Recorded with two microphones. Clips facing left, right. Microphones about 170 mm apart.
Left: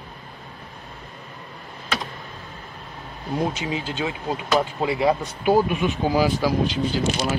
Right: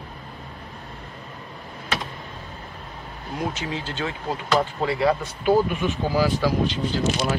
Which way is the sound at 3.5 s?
15° left (ahead or behind).